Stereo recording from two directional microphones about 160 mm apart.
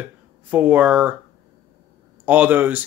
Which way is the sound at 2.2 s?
10° right (ahead or behind).